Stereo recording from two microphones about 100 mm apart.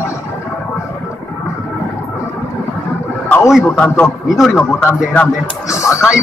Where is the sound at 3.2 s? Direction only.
20° left (ahead or behind).